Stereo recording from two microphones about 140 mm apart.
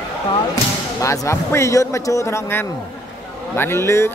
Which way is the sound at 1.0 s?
20° left (ahead or behind).